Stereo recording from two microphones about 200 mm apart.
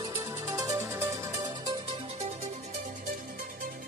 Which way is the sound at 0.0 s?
20° right (ahead or behind).